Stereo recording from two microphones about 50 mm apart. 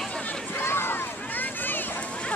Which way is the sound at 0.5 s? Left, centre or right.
Left.